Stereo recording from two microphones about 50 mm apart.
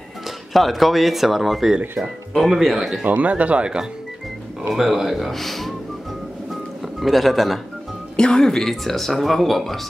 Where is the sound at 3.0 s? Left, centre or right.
Right.